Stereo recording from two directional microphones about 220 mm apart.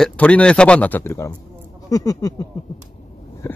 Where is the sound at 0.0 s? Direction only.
5° left (ahead or behind).